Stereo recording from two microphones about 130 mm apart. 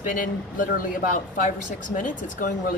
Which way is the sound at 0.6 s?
90° left.